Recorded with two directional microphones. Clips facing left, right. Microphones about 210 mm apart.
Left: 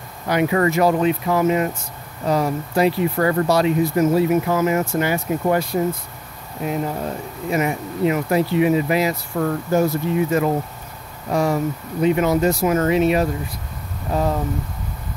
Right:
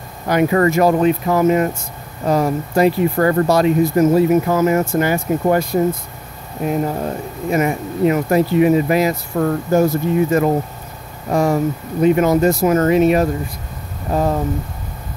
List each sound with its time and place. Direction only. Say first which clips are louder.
0.3 s speech: right 4 dB; 45° right (ahead or behind)